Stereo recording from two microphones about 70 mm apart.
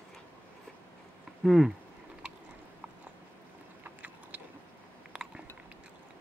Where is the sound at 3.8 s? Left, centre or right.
Right.